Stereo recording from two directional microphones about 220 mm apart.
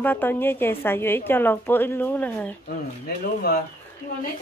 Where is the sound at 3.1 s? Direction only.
45° left (ahead or behind).